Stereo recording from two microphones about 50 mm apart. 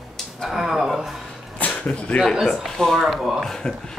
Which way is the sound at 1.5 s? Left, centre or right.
Left.